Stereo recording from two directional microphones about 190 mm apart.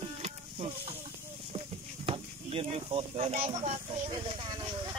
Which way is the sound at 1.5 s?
30° right (ahead or behind).